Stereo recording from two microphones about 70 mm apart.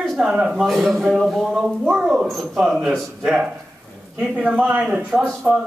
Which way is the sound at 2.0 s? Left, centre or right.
Centre.